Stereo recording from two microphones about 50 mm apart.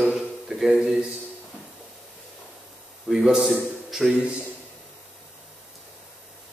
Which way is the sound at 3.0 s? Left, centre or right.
Centre.